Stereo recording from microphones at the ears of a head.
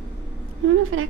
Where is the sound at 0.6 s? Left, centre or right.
Right.